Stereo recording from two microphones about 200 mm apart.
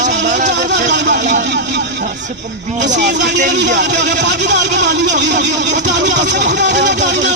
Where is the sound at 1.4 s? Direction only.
60° right (ahead or behind).